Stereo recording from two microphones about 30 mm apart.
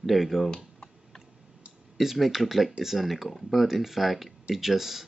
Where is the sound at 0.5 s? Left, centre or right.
Left.